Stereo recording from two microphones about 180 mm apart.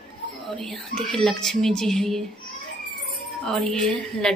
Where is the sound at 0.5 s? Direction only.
Centre (ahead or behind).